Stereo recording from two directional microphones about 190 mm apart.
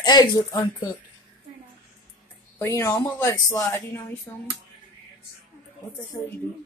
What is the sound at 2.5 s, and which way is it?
A woman's voice, 15° left (ahead or behind).